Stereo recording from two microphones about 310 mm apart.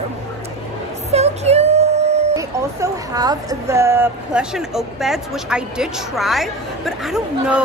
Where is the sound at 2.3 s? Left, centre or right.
Centre.